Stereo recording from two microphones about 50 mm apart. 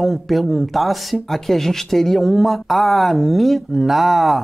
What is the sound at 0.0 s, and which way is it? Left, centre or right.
Speech, centre.